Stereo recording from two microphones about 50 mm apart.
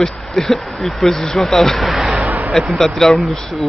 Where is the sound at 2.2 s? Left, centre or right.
Right.